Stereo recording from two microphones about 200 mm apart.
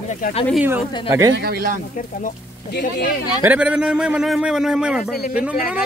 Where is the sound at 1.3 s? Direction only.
50° right (ahead or behind).